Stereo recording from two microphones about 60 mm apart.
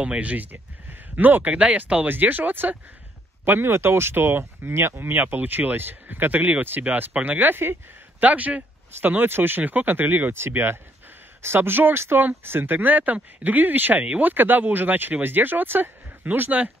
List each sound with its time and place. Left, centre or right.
0.0 s speech: right
8.2 s speech: right